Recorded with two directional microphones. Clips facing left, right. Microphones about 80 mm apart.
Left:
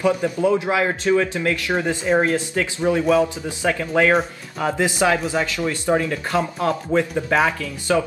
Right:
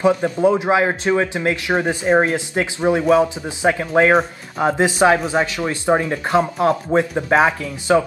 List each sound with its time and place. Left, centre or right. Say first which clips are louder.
0.0 s speech: right 3 dB; right